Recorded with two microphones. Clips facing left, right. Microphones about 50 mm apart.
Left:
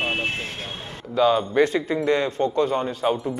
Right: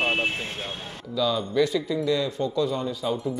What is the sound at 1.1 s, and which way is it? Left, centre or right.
A man's voice, left.